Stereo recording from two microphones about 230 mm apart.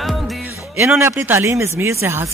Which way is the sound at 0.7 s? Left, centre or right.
Centre.